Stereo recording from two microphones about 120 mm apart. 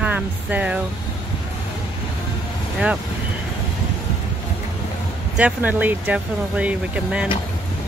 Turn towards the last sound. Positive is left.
turn(degrees=-10)  # may be behind; listen again after turning